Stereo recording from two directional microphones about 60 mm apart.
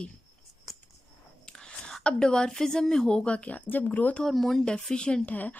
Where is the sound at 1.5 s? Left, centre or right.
Centre.